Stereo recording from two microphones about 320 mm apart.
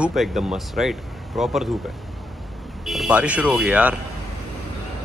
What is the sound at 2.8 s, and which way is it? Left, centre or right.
Speech, centre.